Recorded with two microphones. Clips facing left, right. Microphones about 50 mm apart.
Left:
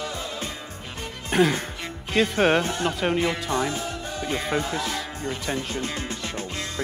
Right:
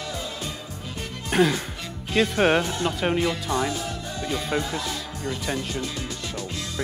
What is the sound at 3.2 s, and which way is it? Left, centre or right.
Speech, left.